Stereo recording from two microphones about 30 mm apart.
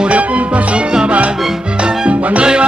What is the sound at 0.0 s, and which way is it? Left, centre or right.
Music, right.